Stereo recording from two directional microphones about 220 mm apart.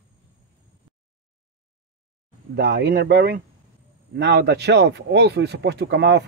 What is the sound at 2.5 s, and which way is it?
Speech, 50° right (ahead or behind).